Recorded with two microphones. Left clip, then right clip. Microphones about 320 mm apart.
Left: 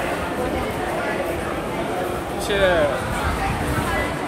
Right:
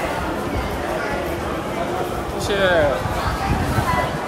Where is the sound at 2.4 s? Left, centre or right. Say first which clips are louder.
Even; right.